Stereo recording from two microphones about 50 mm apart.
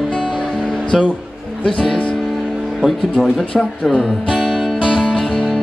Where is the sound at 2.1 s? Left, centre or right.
Centre.